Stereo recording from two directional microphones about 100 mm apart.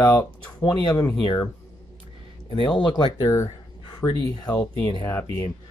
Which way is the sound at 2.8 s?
45° left (ahead or behind).